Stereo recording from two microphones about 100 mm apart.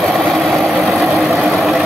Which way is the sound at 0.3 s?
Centre (ahead or behind).